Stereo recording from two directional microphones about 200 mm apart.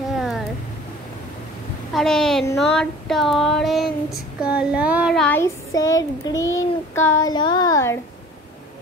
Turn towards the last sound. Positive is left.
turn(degrees=15)  # may be behind; listen again after turning